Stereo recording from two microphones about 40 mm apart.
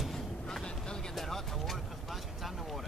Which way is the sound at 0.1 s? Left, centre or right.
Centre.